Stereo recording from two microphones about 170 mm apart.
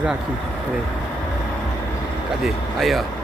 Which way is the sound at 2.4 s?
Centre (ahead or behind).